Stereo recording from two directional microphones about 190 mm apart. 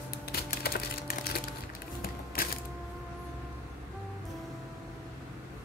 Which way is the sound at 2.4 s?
50° left (ahead or behind).